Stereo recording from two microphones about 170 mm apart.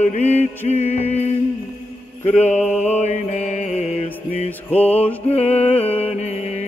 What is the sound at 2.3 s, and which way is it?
Mantra, 40° left (ahead or behind).